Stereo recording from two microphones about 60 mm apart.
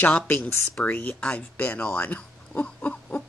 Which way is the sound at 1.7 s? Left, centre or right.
Left.